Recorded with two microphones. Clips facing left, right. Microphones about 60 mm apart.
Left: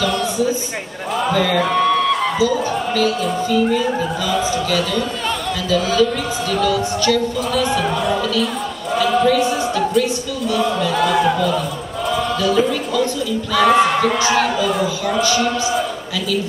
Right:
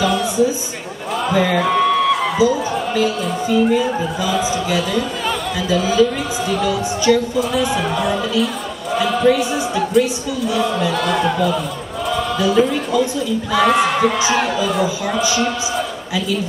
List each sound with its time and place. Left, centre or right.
1.3 s music: centre
2.3 s music: centre
8.9 s a sound: centre
12.4 s music: centre
13.6 s a sound: centre
15.2 s music: centre